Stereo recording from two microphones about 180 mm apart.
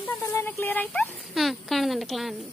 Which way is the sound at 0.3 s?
15° left (ahead or behind).